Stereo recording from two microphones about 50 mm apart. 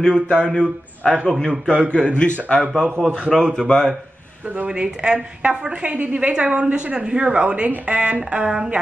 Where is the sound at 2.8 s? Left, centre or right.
Right.